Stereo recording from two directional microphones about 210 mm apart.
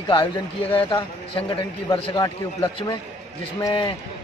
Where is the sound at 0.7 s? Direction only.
20° left (ahead or behind).